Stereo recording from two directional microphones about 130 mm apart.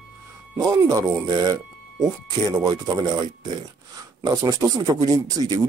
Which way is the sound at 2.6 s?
30° right (ahead or behind).